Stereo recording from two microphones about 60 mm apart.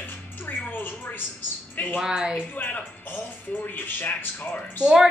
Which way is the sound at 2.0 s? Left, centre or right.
Centre.